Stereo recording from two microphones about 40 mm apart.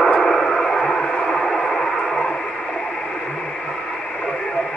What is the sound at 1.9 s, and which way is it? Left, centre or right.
Radio, centre.